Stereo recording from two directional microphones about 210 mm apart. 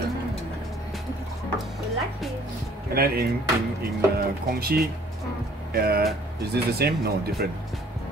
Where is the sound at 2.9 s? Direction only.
45° right (ahead or behind).